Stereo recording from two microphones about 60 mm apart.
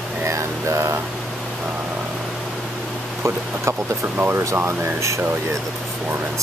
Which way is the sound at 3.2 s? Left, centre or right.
Right.